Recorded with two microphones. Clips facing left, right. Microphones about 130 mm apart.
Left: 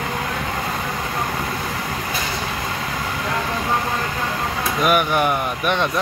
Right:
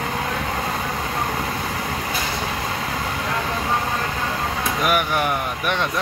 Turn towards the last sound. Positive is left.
turn(degrees=20)  # may be behind; listen again after turning